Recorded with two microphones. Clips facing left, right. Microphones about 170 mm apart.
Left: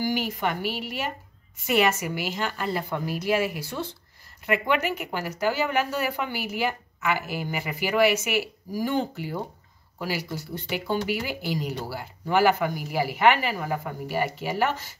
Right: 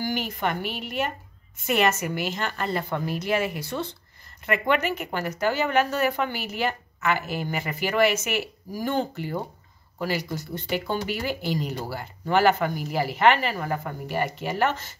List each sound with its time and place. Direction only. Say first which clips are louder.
0.0 s a woman's voice: left 1 dB; 10° left (ahead or behind)